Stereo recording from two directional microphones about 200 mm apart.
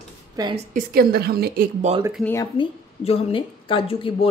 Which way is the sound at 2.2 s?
15° left (ahead or behind).